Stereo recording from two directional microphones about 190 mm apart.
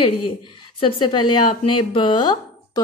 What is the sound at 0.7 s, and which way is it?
Speech, 25° left (ahead or behind).